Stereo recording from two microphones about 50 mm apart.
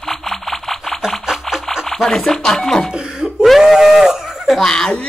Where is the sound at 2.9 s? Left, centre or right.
Centre.